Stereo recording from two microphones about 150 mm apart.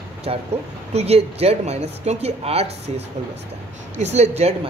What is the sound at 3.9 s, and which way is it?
Speech, 45° right (ahead or behind).